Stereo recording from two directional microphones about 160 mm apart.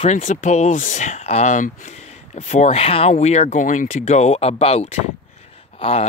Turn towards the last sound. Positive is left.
turn(degrees=35)  # may be behind; listen again after turning